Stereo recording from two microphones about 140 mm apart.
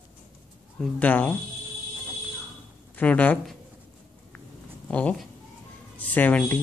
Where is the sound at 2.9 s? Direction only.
10° left (ahead or behind).